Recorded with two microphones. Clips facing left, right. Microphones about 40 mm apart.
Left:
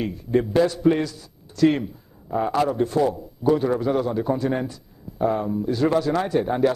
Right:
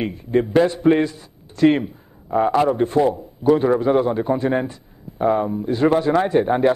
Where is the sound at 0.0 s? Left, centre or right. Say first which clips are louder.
Right 2 dB; right.